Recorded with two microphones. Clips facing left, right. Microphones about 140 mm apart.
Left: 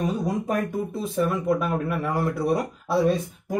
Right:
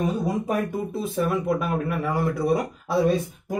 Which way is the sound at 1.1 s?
5° right (ahead or behind).